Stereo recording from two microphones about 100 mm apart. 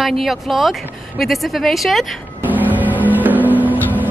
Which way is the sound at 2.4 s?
15° right (ahead or behind).